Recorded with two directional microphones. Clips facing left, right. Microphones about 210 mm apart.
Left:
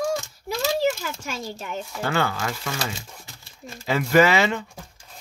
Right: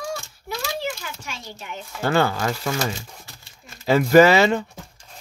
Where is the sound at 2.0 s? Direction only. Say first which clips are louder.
Right 5 dB; 40° right (ahead or behind).